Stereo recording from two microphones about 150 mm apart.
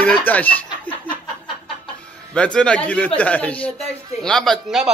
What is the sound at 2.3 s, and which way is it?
A man's voice, 5° left (ahead or behind).